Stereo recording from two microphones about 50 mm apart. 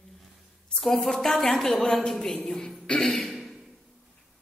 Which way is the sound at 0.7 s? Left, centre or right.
Centre.